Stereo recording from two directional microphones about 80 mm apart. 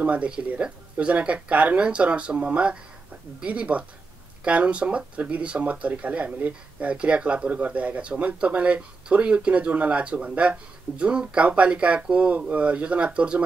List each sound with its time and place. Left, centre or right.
0.0 s speech: centre